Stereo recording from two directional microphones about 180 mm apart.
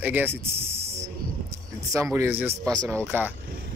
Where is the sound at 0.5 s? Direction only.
35° right (ahead or behind).